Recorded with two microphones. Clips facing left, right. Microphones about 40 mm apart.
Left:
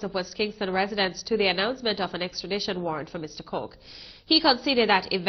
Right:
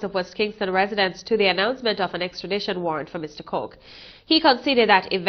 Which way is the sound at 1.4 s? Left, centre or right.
Centre.